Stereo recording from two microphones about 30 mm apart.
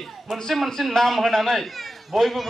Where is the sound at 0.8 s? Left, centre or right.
Centre.